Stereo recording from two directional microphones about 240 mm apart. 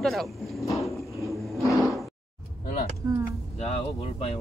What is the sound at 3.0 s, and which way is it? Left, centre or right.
Speech, centre.